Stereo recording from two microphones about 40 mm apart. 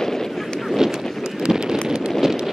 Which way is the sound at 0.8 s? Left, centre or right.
Centre.